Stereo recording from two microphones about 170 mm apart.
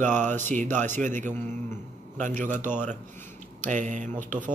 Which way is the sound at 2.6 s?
10° left (ahead or behind).